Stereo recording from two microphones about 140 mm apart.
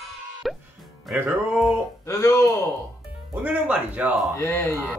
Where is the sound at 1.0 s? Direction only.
10° right (ahead or behind).